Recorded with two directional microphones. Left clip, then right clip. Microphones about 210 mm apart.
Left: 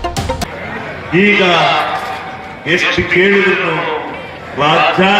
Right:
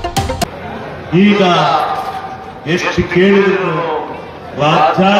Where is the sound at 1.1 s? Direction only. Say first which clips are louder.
Left 1 dB; 50° right (ahead or behind).